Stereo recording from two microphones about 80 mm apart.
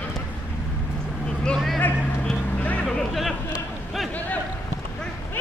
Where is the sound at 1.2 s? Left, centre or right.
Centre.